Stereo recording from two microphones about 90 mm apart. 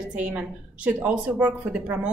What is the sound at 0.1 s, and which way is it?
A woman's voice, 15° right (ahead or behind).